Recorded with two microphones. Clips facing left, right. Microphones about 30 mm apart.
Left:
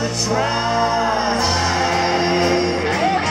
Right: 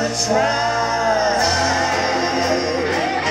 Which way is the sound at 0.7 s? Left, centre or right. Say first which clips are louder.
Even; centre.